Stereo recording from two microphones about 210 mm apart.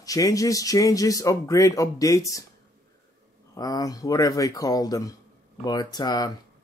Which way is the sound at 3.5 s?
15° left (ahead or behind).